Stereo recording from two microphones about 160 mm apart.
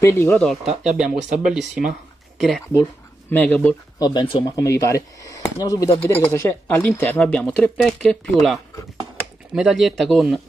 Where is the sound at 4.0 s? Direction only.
25° left (ahead or behind).